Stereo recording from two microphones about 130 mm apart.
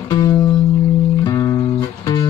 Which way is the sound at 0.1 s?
30° left (ahead or behind).